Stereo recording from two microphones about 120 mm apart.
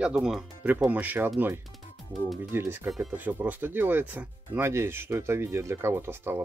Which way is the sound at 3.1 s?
15° right (ahead or behind).